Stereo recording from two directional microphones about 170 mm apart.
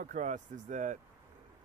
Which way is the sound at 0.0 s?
45° right (ahead or behind).